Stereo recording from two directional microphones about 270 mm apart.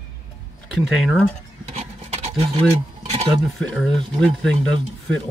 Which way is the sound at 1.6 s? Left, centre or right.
Right.